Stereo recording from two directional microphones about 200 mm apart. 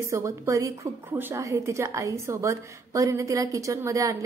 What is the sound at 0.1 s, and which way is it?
A woman's voice, 15° right (ahead or behind).